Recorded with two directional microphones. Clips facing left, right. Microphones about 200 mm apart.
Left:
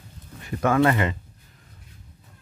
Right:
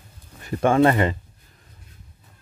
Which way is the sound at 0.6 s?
30° right (ahead or behind).